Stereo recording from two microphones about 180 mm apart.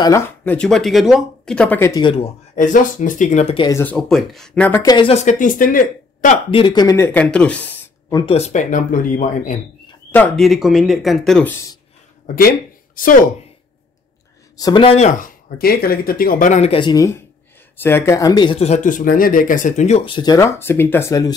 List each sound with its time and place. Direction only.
0.0 s speech: 15° left (ahead or behind)
2.0 s speech: 25° left (ahead or behind)
2.5 s speech: 45° left (ahead or behind)
3.7 s speech: 10° left (ahead or behind)
4.8 s speech: 30° left (ahead or behind); by 6.4 s 45° left (ahead or behind)
6.5 s speech: 25° left (ahead or behind); by 7.8 s 10° left (ahead or behind)
8.1 s speech: 25° left (ahead or behind)
8.4 s speech: 40° left (ahead or behind)
10.1 s speech: 5° left (ahead or behind)
12.4 s speech: 55° left (ahead or behind)
14.6 s speech: 25° left (ahead or behind); by 20.0 s 45° left (ahead or behind)
20.1 s speech: 25° left (ahead or behind)